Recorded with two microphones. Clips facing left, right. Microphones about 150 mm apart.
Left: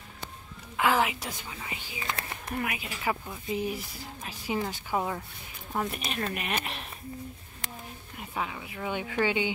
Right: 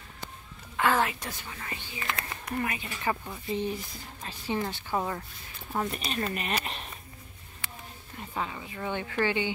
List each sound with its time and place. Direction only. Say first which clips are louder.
0.7 s speech: even; 10° left (ahead or behind)
8.2 s speech: even; 5° left (ahead or behind)